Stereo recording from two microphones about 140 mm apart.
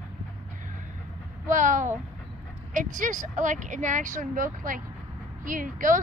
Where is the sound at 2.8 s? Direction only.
70° right (ahead or behind).